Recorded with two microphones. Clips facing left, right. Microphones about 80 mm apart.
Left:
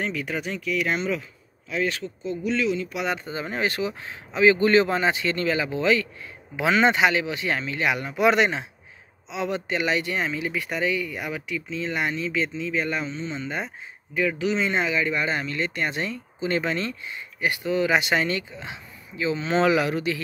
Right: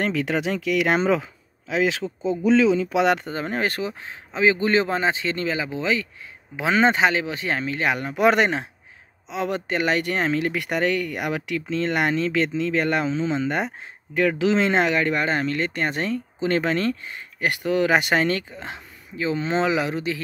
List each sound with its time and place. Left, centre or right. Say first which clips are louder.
0.0 s speech: right 5 dB; right
3.3 s speech: right 2 dB; right
4.0 s a man's voice: left 2 dB; right
17.5 s speech: right 2 dB; right